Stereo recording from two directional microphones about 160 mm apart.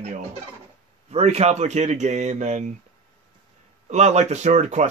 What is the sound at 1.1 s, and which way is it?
Speech, 40° right (ahead or behind).